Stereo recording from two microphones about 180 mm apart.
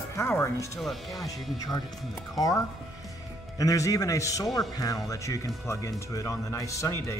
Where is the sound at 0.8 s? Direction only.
Centre (ahead or behind).